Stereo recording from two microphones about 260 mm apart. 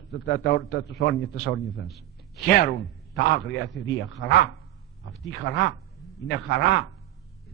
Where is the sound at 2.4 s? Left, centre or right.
Left.